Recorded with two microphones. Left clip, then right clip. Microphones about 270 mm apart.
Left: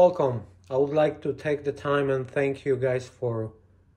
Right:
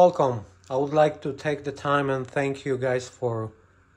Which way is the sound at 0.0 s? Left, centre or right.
Right.